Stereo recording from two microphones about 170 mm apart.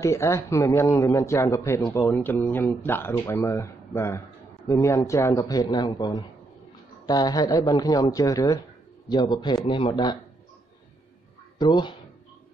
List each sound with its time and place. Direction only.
0.0 s a man's voice: 15° left (ahead or behind)
11.5 s speech: 25° left (ahead or behind)